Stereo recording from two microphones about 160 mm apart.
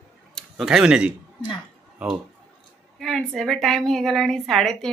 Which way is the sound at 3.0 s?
5° left (ahead or behind).